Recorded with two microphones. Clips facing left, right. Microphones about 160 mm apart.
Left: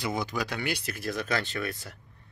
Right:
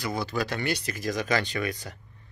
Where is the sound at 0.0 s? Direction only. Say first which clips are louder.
Right 1 dB; 20° left (ahead or behind).